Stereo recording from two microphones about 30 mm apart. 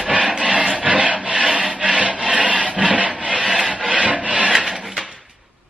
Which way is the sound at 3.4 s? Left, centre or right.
Centre.